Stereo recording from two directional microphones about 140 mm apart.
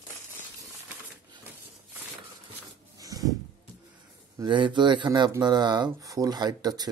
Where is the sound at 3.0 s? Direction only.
25° right (ahead or behind).